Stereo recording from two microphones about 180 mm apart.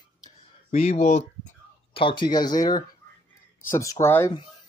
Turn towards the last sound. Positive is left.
turn(degrees=15)  # may be behind; listen again after turning